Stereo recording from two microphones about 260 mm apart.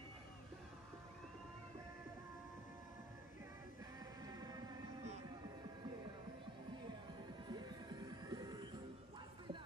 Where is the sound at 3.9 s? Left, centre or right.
Centre.